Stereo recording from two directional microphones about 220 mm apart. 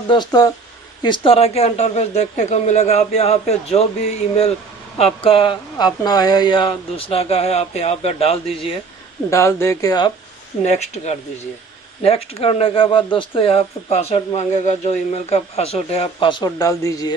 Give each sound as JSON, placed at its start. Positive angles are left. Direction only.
{"t": 0.1, "sound": "speech", "side_deg": 20}
{"t": 9.3, "sound": "speech", "side_deg": 10}
{"t": 10.6, "sound": "speech", "side_deg": 30}